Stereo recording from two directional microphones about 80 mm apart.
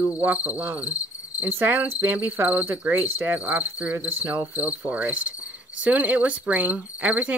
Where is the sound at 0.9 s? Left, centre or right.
Left.